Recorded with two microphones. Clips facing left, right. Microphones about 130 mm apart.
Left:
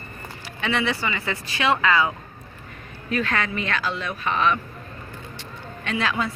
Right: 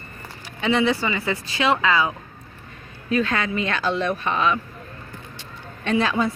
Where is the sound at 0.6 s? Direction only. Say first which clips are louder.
Right 4 dB; 20° right (ahead or behind).